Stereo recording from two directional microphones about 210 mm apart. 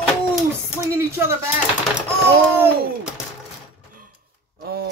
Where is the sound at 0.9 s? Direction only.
10° right (ahead or behind).